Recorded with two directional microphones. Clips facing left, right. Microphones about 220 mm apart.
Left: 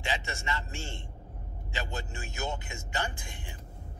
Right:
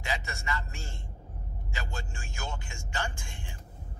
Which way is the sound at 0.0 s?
25° left (ahead or behind).